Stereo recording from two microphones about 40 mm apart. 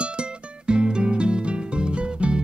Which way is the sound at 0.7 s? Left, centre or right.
Right.